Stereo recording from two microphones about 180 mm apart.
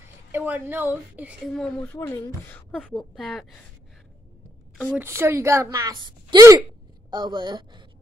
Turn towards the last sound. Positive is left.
turn(degrees=-25)  # may be behind; listen again after turning